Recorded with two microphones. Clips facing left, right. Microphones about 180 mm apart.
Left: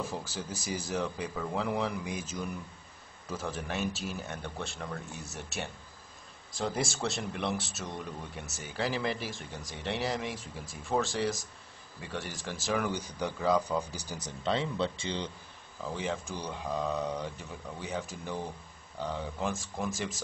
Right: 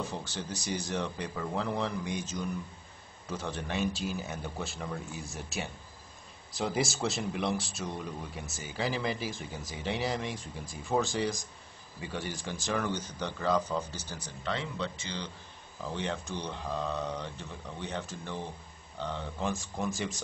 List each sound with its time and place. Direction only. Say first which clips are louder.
0.0 s speech: even; 5° left (ahead or behind); by 15.2 s 25° left (ahead or behind)
15.9 s speech: even; 5° left (ahead or behind)